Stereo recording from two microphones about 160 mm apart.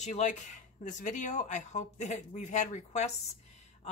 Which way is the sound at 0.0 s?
45° left (ahead or behind).